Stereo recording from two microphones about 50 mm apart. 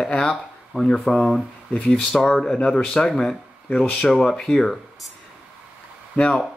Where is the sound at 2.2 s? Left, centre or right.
Centre.